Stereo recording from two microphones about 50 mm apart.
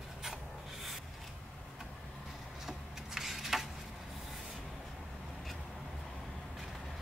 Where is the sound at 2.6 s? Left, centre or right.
Centre.